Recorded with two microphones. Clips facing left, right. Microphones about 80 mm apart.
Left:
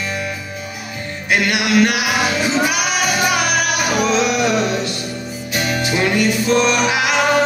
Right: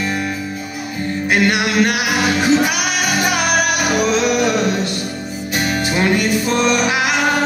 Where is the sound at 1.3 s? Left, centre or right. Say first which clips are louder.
Even; right.